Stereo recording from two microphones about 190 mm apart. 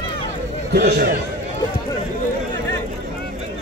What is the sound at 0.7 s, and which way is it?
Speech, 60° right (ahead or behind).